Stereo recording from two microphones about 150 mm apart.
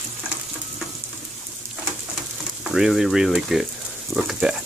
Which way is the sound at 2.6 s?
5° right (ahead or behind).